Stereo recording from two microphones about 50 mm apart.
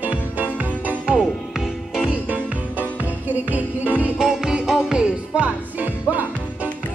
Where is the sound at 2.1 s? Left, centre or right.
Right.